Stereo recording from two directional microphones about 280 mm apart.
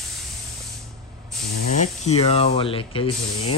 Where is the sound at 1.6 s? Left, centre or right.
Left.